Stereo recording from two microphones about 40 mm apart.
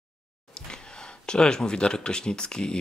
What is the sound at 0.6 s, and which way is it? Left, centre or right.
Speech, centre.